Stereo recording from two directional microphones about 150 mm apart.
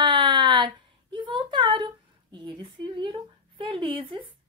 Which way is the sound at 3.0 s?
35° right (ahead or behind).